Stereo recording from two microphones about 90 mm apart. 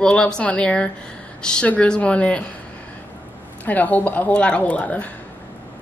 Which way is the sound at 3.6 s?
20° left (ahead or behind).